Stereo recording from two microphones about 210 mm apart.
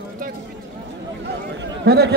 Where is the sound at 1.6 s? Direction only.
50° right (ahead or behind).